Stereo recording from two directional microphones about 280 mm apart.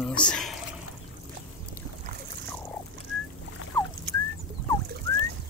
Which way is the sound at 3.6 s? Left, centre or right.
Left.